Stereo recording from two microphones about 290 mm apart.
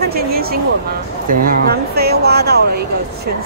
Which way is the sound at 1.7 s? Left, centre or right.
Right.